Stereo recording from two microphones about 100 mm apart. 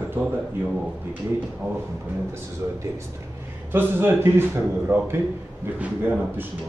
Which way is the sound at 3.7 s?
20° right (ahead or behind).